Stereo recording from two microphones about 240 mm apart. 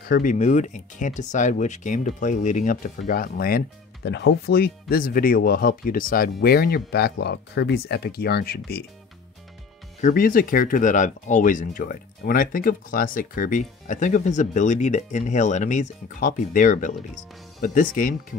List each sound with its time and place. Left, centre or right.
0.0 s speech: left
9.9 s speech: left